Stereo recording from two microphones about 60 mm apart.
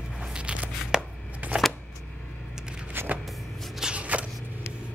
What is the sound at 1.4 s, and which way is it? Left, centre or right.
Shuffling cards, right.